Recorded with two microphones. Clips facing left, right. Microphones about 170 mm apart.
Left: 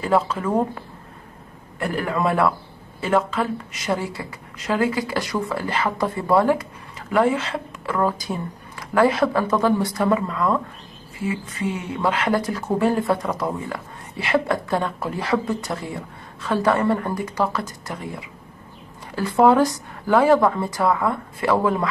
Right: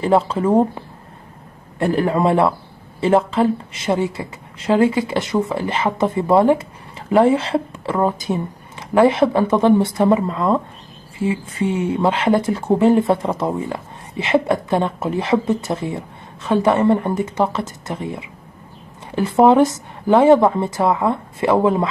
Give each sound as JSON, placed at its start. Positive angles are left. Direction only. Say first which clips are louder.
{"t": 0.0, "sound": "speech", "louder": "right 4 dB", "side_deg": -25}